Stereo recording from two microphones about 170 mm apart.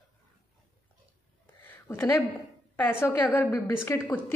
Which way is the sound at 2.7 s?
15° left (ahead or behind).